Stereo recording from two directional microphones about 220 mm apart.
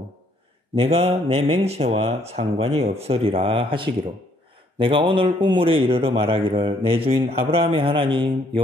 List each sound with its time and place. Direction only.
0.7 s a man's voice: 25° right (ahead or behind)